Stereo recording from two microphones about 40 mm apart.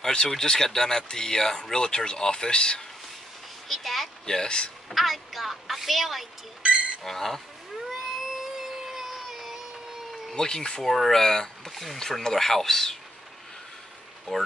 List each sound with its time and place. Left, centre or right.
0.0 s speech: centre
3.6 s speech: centre
4.3 s speech: centre
4.8 s speech: centre
7.9 s a sound: centre
10.3 s speech: centre
10.8 s speech: centre